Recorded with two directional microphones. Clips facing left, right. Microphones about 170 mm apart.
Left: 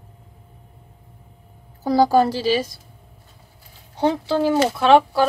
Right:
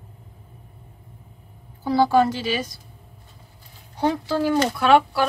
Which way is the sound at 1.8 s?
40° left (ahead or behind).